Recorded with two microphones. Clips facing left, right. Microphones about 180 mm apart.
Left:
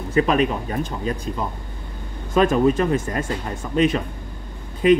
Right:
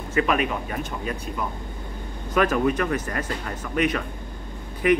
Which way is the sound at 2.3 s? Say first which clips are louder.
Left 4 dB; 25° left (ahead or behind).